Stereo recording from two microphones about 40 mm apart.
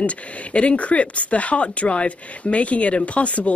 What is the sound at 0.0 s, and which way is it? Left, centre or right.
Speech, left.